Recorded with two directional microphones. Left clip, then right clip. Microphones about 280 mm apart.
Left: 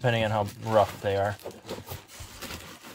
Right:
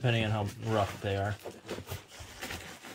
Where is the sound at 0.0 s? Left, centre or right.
Centre.